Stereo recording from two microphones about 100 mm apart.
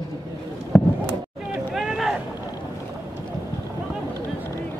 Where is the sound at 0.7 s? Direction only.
15° left (ahead or behind).